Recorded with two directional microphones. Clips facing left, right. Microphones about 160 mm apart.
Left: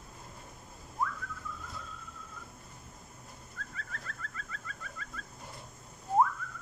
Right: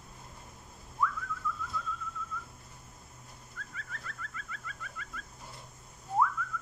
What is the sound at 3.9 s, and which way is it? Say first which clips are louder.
Fowl: even; 40° left (ahead or behind).